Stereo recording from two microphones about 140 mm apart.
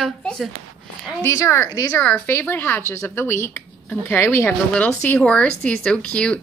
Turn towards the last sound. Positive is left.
turn(degrees=10)  # may be behind; listen again after turning